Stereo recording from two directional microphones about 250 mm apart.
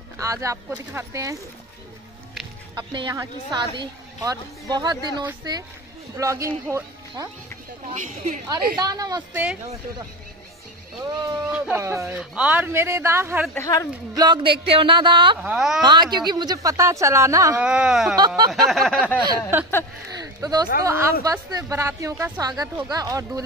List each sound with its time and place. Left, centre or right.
0.2 s a woman's voice: centre
2.7 s a woman's voice: centre
7.9 s speech: right
8.7 s a woman's voice: centre
11.4 s a woman's voice: centre
13.6 s a woman's voice: centre
14.1 s speech: centre
15.4 s a sound: centre
15.8 s a woman's voice: centre
18.1 s a woman's voice: centre
18.7 s a sound: centre
20.8 s a woman's voice: centre